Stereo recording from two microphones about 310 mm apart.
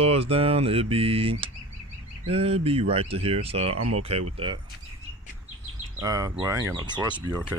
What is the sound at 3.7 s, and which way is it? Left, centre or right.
Speech, right.